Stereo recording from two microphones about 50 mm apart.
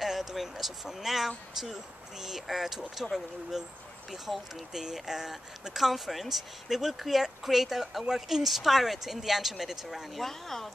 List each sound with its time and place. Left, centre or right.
0.0 s speech: centre